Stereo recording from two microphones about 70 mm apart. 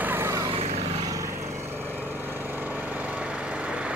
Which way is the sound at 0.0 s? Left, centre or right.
Right.